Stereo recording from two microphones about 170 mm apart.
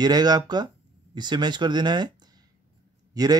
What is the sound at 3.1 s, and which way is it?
Speech, 20° right (ahead or behind).